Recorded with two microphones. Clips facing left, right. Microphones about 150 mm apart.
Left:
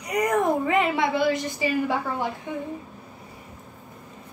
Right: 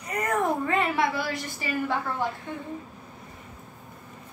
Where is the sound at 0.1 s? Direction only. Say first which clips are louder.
Left 4 dB; 15° left (ahead or behind).